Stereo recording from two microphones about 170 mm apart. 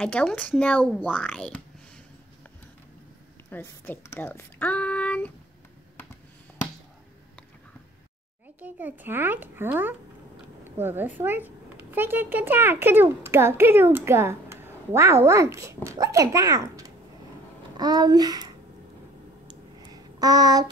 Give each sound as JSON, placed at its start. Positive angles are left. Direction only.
{"t": 0.0, "sound": "speech", "side_deg": 5}
{"t": 3.4, "sound": "speech", "side_deg": 10}
{"t": 8.5, "sound": "a child's voice", "side_deg": -10}
{"t": 20.2, "sound": "a child's voice", "side_deg": -20}